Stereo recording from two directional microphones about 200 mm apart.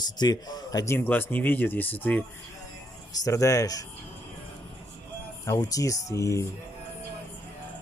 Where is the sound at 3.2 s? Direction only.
15° left (ahead or behind).